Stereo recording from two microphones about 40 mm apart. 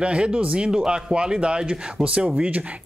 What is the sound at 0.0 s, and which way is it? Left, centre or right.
Speech, right.